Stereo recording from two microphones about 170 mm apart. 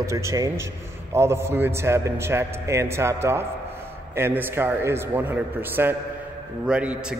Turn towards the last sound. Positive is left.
turn(degrees=-5)  # may be behind; listen again after turning